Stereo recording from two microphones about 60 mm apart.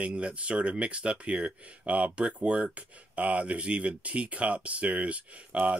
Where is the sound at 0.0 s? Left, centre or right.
Centre.